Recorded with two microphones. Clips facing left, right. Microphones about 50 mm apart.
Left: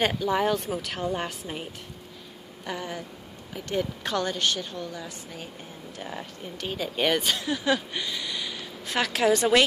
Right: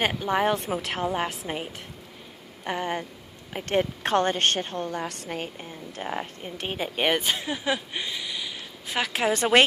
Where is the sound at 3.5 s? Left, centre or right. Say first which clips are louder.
Right 4 dB; right.